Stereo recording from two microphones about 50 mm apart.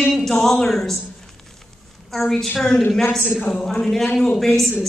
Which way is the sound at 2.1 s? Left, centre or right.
Centre.